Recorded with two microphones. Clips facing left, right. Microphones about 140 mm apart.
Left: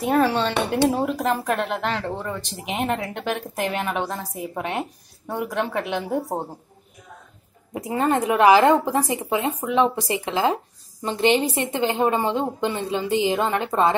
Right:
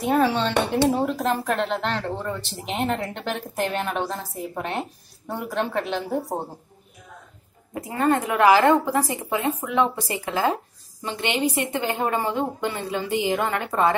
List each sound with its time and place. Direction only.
0.0 s speech: centre (ahead or behind)
7.7 s speech: 20° left (ahead or behind)
11.1 s speech: 30° left (ahead or behind)